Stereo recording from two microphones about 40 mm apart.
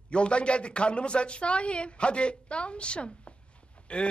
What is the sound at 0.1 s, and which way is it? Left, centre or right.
Speech, left.